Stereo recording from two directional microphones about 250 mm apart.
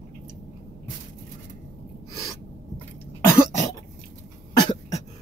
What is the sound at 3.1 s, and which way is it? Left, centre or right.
Cough, centre.